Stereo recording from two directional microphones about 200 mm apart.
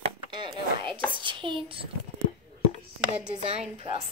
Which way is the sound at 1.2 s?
25° right (ahead or behind).